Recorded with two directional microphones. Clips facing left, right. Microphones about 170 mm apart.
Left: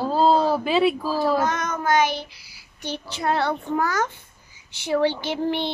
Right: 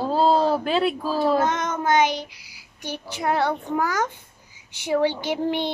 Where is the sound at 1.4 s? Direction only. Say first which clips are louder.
Right 1 dB; 25° right (ahead or behind).